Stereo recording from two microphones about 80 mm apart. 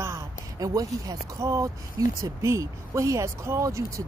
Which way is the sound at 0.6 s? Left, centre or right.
Right.